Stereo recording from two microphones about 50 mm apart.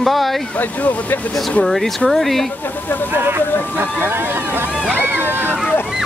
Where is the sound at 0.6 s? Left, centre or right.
Left.